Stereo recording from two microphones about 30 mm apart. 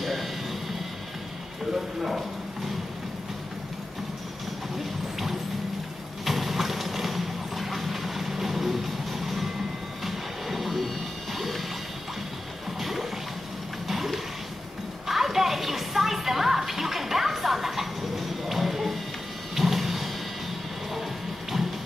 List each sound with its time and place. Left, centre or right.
0.0 s music: centre
2.0 s speech: centre
6.2 s vehicle: centre
10.0 s music: centre
13.8 s a sound: centre
15.0 s music: centre
19.5 s a sound: centre
21.5 s music: centre